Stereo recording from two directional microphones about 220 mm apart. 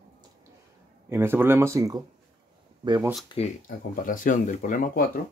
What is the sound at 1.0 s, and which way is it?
Speech, 10° right (ahead or behind).